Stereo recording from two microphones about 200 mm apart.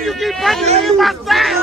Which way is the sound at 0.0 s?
Centre (ahead or behind).